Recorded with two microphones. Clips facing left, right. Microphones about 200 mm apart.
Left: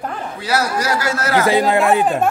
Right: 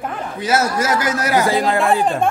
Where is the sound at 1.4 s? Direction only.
20° left (ahead or behind).